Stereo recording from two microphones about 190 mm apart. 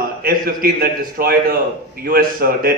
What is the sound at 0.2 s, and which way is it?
A man's voice, 50° right (ahead or behind).